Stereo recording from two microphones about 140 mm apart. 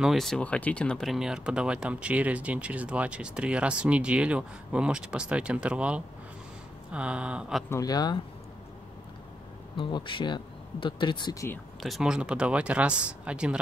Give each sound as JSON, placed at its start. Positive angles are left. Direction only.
{"t": 0.0, "sound": "speech", "side_deg": 0}
{"t": 7.7, "sound": "speech", "side_deg": 25}
{"t": 9.8, "sound": "speech", "side_deg": 35}
{"t": 11.8, "sound": "speech", "side_deg": 0}